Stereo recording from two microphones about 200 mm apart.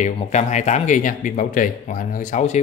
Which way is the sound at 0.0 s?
35° left (ahead or behind).